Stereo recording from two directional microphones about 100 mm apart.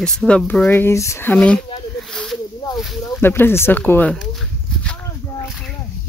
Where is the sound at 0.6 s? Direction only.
25° left (ahead or behind).